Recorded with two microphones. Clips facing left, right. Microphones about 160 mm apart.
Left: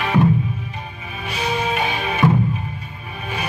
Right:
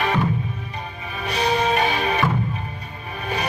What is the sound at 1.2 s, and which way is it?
Music, 40° right (ahead or behind).